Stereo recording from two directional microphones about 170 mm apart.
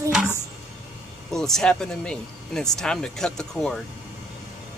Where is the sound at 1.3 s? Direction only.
5° left (ahead or behind).